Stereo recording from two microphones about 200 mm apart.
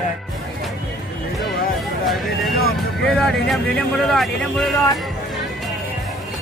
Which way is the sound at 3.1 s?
5° left (ahead or behind).